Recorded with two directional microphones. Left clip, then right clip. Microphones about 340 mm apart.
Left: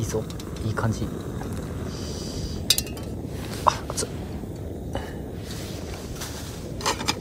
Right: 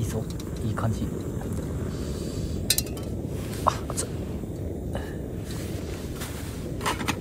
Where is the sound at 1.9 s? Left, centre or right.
Left.